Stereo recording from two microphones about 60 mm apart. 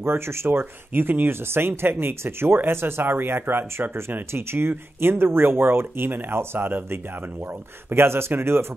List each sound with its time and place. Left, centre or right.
0.0 s speech: right
0.5 s speech: right